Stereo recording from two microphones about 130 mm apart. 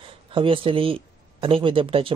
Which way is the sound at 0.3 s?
45° right (ahead or behind).